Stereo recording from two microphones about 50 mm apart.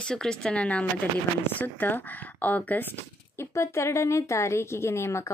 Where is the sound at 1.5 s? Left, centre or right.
Left.